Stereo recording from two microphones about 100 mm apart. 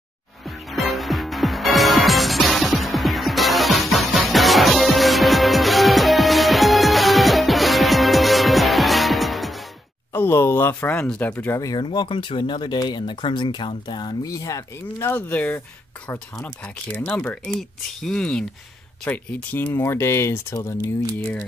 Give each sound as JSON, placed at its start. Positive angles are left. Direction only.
{"t": 0.7, "sound": "music", "side_deg": 0}
{"t": 10.1, "sound": "speech", "side_deg": 25}
{"t": 11.5, "sound": "speech", "side_deg": 35}
{"t": 11.8, "sound": "speech", "side_deg": 50}
{"t": 15.0, "sound": "speech", "side_deg": 15}
{"t": 17.2, "sound": "speech", "side_deg": 10}
{"t": 19.0, "sound": "speech", "side_deg": 20}